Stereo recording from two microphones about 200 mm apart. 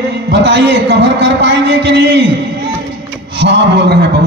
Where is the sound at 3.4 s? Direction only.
60° right (ahead or behind).